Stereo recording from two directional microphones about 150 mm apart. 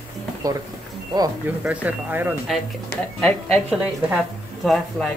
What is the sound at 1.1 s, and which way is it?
Speech, 25° right (ahead or behind).